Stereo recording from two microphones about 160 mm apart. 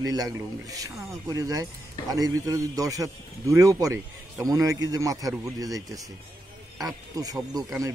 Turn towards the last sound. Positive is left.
turn(degrees=-20)  # may be behind; listen again after turning